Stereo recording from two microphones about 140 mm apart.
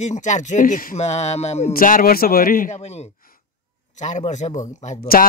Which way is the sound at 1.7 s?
90° left.